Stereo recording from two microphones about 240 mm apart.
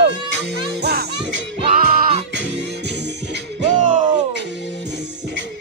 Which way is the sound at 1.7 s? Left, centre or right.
Right.